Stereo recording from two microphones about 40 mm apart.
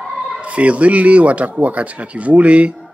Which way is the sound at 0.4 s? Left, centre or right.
Right.